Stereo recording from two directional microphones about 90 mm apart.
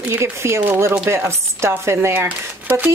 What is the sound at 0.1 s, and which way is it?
A woman's voice, 30° right (ahead or behind).